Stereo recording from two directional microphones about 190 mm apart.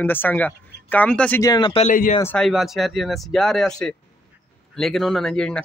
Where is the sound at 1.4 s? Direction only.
20° left (ahead or behind).